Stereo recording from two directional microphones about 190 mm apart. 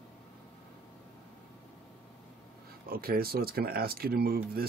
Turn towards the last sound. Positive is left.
turn(degrees=-55)  # may be behind; listen again after turning